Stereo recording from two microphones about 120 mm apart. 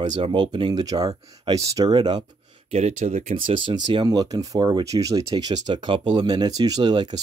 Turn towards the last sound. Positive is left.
turn(degrees=-35)  # may be behind; listen again after turning